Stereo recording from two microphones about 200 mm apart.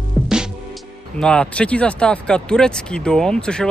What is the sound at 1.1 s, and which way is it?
Speech, 5° left (ahead or behind).